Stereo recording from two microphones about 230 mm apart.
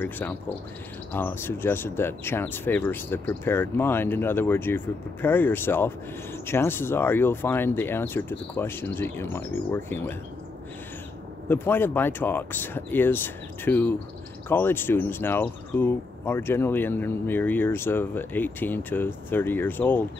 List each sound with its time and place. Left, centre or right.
0.0 s speech: centre
11.4 s speech: centre